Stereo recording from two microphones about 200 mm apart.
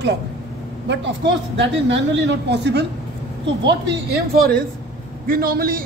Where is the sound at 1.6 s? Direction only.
65° right (ahead or behind).